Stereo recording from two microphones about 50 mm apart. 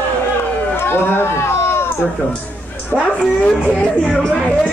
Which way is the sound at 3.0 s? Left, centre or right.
Left.